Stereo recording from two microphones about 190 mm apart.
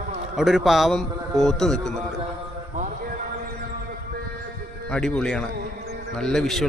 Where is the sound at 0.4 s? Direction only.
Centre (ahead or behind).